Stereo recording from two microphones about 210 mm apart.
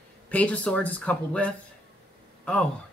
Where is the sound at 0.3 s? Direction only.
5° left (ahead or behind).